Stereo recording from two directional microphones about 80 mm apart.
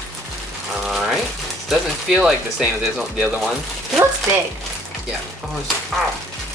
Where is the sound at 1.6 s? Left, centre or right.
Centre.